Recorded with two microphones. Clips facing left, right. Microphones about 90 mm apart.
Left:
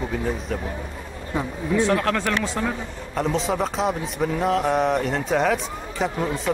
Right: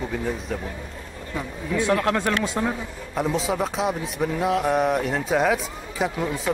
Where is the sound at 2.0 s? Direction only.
25° right (ahead or behind).